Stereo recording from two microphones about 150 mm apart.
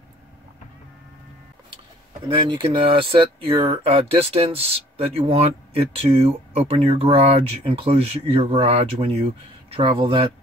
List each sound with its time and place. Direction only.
2.2 s speech: 35° right (ahead or behind)